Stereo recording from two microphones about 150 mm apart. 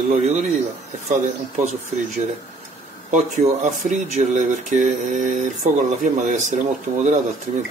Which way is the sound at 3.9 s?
50° right (ahead or behind).